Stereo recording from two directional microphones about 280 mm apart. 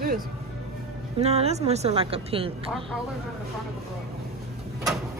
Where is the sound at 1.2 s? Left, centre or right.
Right.